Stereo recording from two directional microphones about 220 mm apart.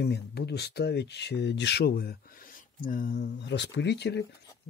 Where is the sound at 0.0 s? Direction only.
50° left (ahead or behind).